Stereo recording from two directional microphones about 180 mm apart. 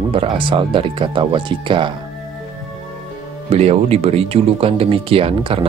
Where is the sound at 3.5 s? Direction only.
35° right (ahead or behind).